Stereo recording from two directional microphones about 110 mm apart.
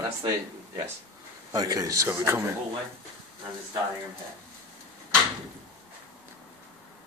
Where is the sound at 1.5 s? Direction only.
35° right (ahead or behind).